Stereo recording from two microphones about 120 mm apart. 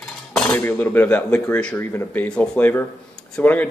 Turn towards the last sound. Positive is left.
turn(degrees=15)  # may be behind; listen again after turning